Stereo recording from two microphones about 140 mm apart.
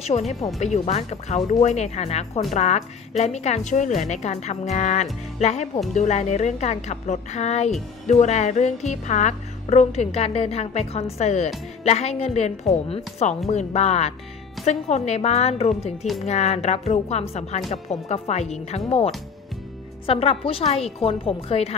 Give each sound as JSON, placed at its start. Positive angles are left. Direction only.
{"t": 0.0, "sound": "a woman's voice", "side_deg": 50}
{"t": 20.1, "sound": "a woman's voice", "side_deg": 45}